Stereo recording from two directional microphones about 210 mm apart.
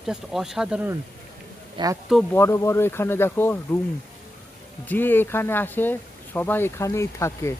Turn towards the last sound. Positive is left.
turn(degrees=15)  # may be behind; listen again after turning